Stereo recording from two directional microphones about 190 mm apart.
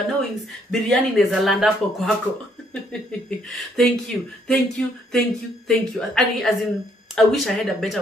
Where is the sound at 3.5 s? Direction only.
Centre (ahead or behind).